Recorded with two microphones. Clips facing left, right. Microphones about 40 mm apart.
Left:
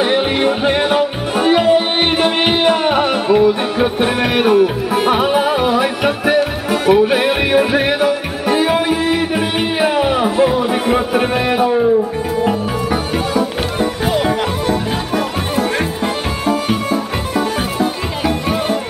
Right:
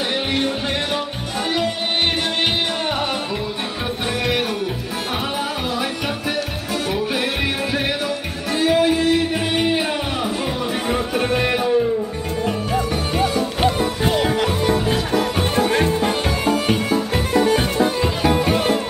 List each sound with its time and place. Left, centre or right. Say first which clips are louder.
0.0 s music: left 7 dB; left; by 18.3 s centre